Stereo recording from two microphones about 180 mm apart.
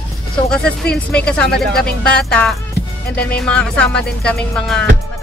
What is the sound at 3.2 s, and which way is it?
Speech, 60° left (ahead or behind).